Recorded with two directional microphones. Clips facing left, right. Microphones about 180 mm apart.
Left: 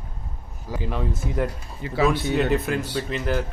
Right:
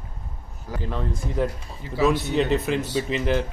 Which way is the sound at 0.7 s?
10° left (ahead or behind).